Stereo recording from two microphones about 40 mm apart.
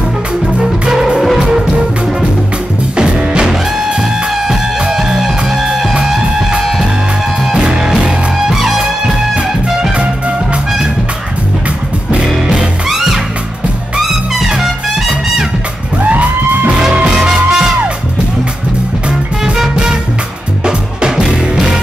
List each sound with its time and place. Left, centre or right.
0.6 s music: centre
3.0 s music: right; by 5.9 s centre
7.4 s music: centre
8.0 s music: centre
9.9 s music: right
12.8 s music: centre
16.0 s music: right
16.9 s music: right
19.0 s music: right